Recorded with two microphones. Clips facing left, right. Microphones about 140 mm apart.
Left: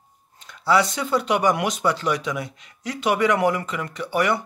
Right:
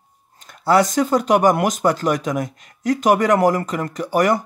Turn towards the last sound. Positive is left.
turn(degrees=-40)  # may be behind; listen again after turning